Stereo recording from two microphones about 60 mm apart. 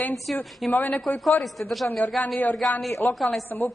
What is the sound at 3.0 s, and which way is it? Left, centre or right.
Speech, left.